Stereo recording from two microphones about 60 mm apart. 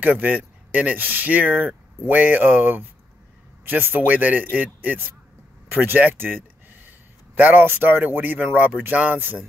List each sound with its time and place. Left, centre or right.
0.0 s speech: right